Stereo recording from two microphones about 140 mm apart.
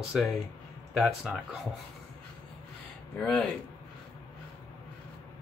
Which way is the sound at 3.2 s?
5° left (ahead or behind).